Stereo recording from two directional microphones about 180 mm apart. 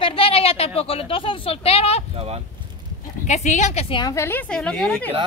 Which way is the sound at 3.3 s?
40° left (ahead or behind).